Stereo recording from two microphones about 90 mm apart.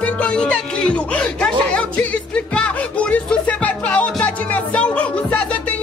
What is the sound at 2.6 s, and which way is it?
Music, 15° left (ahead or behind).